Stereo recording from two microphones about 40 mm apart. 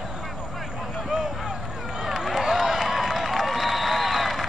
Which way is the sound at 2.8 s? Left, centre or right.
Centre.